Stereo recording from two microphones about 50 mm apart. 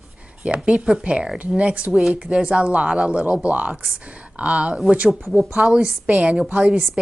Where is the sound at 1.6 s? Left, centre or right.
Right.